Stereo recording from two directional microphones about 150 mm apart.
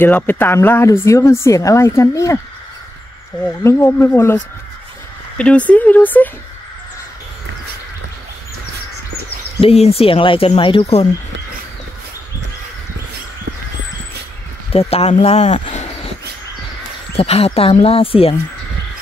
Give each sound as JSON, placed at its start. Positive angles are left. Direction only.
{"t": 0.0, "sound": "speech", "side_deg": 10}
{"t": 3.6, "sound": "speech", "side_deg": 20}
{"t": 5.4, "sound": "speech", "side_deg": 10}
{"t": 9.6, "sound": "speech", "side_deg": 40}
{"t": 14.7, "sound": "speech", "side_deg": 40}
{"t": 17.2, "sound": "speech", "side_deg": 40}